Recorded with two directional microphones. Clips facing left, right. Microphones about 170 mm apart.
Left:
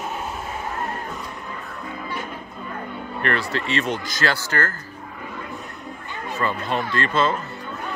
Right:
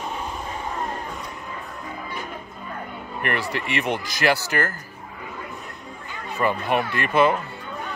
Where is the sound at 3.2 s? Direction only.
15° right (ahead or behind).